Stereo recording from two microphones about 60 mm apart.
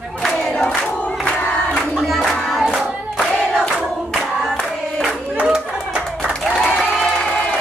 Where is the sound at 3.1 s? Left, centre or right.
Centre.